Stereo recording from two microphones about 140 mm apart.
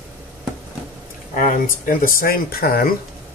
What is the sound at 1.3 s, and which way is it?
Speech, 70° left (ahead or behind).